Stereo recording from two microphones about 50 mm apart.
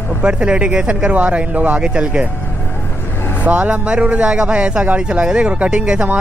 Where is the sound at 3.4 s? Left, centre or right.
Right.